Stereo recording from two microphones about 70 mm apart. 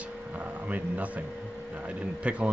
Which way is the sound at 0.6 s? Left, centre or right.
Right.